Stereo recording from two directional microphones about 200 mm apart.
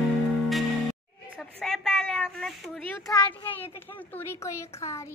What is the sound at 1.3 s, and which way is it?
A woman's voice, centre (ahead or behind).